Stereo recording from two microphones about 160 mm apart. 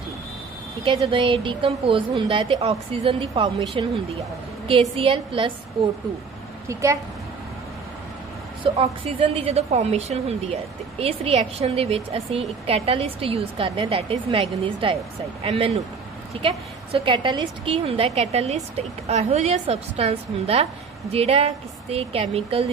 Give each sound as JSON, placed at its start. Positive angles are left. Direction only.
{"t": 0.8, "sound": "a woman's voice", "side_deg": -30}
{"t": 6.7, "sound": "a woman's voice", "side_deg": -20}
{"t": 8.7, "sound": "a woman's voice", "side_deg": -35}